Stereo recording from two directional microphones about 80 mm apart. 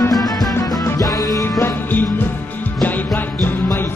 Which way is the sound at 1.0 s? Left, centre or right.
Left.